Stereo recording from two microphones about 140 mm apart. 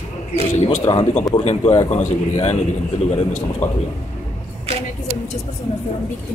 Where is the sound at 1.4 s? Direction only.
50° left (ahead or behind).